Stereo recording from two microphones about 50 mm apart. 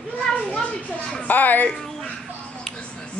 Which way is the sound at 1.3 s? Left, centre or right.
Left.